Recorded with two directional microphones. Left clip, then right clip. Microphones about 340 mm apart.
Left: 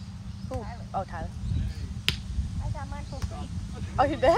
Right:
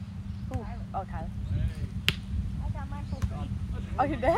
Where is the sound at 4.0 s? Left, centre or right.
Left.